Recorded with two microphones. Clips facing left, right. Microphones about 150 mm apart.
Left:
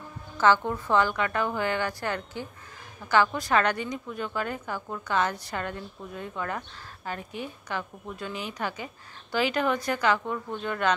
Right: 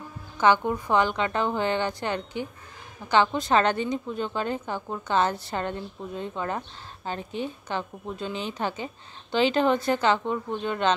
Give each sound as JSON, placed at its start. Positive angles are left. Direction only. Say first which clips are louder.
{"t": 0.4, "sound": "a woman's voice", "louder": "right 1 dB", "side_deg": -15}